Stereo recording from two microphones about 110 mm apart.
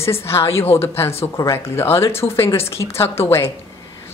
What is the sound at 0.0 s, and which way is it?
A woman's voice, 25° left (ahead or behind).